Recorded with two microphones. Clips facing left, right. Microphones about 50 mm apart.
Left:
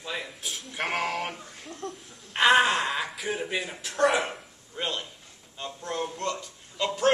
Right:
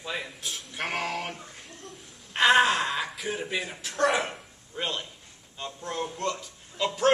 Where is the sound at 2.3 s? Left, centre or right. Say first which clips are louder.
Even; centre.